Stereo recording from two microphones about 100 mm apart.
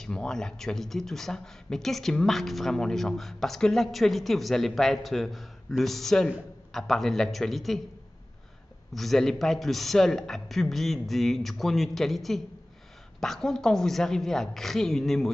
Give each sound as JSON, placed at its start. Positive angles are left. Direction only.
{"t": 0.0, "sound": "speech", "side_deg": 5}
{"t": 8.9, "sound": "speech", "side_deg": 0}